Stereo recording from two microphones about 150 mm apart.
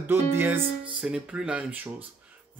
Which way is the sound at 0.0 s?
15° right (ahead or behind).